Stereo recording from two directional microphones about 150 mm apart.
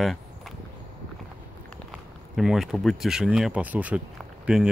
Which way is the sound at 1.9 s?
Centre (ahead or behind).